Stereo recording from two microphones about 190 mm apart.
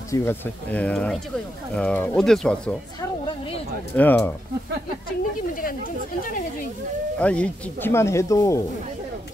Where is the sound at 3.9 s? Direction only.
10° left (ahead or behind).